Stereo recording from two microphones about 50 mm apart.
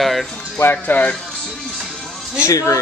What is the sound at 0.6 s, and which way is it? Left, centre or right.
Speech, left.